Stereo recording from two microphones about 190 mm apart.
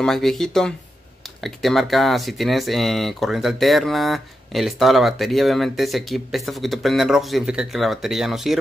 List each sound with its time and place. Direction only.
0.0 s speech: centre (ahead or behind)